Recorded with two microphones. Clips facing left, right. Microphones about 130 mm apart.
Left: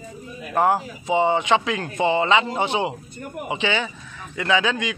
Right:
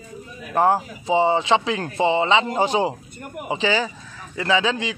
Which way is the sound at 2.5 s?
40° right (ahead or behind).